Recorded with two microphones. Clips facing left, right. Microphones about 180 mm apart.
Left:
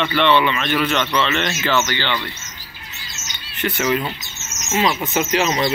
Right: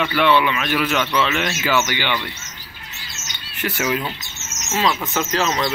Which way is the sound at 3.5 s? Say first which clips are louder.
Left 2 dB; 5° right (ahead or behind).